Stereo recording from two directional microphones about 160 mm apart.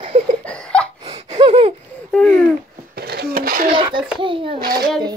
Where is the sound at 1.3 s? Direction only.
35° right (ahead or behind).